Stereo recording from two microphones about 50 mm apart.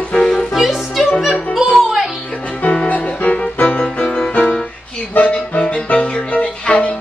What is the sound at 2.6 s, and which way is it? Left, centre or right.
Music, left.